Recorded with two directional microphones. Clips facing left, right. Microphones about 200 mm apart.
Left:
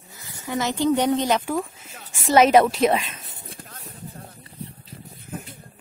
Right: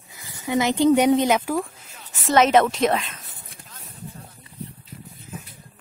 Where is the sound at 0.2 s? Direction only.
15° right (ahead or behind); by 3.2 s 5° left (ahead or behind).